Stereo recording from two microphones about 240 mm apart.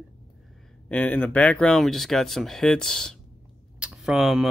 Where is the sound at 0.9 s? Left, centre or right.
Centre.